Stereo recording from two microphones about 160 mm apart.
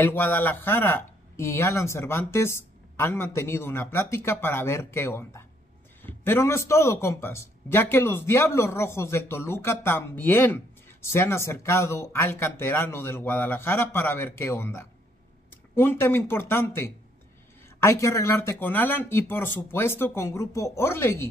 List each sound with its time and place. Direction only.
0.0 s a man's voice: 10° left (ahead or behind)